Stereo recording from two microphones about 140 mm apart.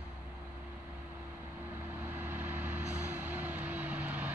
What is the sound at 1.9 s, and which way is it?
Vehicle, 15° right (ahead or behind).